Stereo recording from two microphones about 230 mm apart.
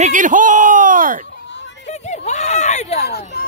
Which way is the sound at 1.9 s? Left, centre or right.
Left.